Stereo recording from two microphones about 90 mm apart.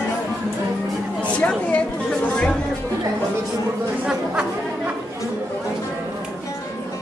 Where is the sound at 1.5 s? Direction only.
10° left (ahead or behind).